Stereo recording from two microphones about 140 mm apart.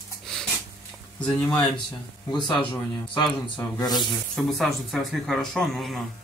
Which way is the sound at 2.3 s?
35° left (ahead or behind).